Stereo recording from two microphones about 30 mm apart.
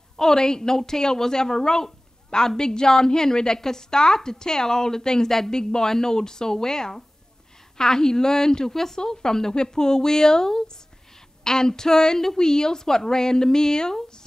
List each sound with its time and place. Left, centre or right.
0.2 s a woman's voice: centre